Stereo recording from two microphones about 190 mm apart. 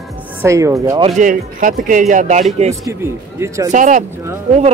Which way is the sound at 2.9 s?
15° right (ahead or behind).